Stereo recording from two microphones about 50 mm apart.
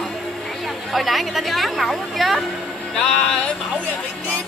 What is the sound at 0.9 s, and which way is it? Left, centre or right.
A woman's voice, centre.